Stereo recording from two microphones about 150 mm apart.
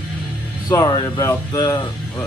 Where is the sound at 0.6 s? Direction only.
25° left (ahead or behind).